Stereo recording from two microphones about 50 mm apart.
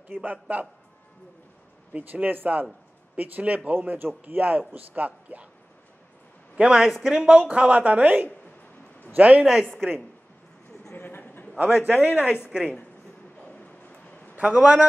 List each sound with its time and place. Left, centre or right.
0.1 s speech: right
2.0 s speech: right
6.5 s a woman's voice: centre
9.4 s speech: centre
11.0 s a sound: left
11.5 s speech: right
13.4 s a sound: left
14.4 s speech: right